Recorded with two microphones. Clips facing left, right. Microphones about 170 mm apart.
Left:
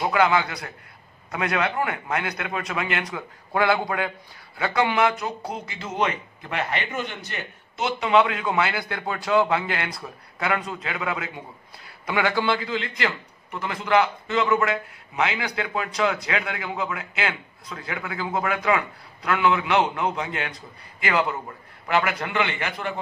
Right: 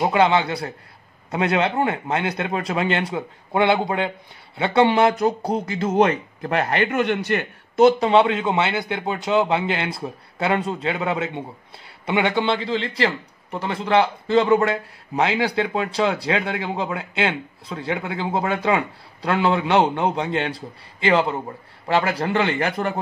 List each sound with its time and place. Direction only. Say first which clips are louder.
0.0 s a man's voice: right 3 dB; 25° right (ahead or behind); by 7.4 s 70° right (ahead or behind)
7.7 s speech: right 12 dB; 45° right (ahead or behind)
8.1 s a man's voice: right 3 dB; 30° right (ahead or behind)